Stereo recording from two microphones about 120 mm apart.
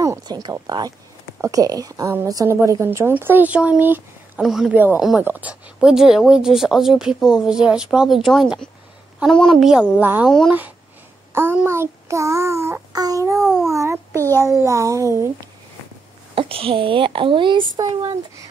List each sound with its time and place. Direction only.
0.0 s a woman's voice: 30° right (ahead or behind); by 4.0 s 15° right (ahead or behind)
4.4 s speech: 5° right (ahead or behind)
4.7 s speech: 15° right (ahead or behind); by 10.5 s 5° left (ahead or behind)
11.3 s a woman's voice: 20° right (ahead or behind)
13.4 s speech: 5° left (ahead or behind)
13.7 s a sound: 25° right (ahead or behind)
14.4 s a woman's voice: 25° right (ahead or behind)
16.3 s speech: 50° right (ahead or behind)